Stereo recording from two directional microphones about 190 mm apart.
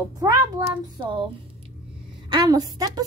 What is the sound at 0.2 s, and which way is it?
Speech, 15° right (ahead or behind).